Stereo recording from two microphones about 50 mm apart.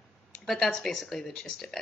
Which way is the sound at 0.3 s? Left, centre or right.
Centre.